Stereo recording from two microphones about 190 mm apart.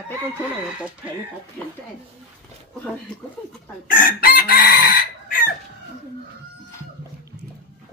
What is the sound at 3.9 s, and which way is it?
Chicken, 50° left (ahead or behind).